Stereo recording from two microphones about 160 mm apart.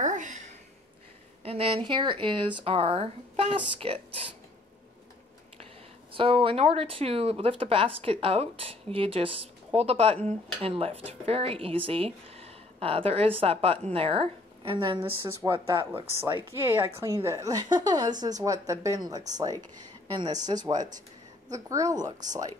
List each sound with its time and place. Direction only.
0.0 s a sound: 55° right (ahead or behind)
1.4 s speech: 40° right (ahead or behind)
6.1 s speech: 35° right (ahead or behind)
15.0 s a woman's voice: 15° right (ahead or behind)
20.4 s a woman's voice: 25° right (ahead or behind)